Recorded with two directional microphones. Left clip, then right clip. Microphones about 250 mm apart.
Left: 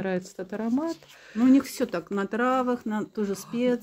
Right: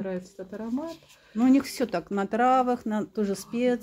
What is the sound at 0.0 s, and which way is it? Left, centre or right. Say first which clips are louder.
Speech: left 4 dB; left.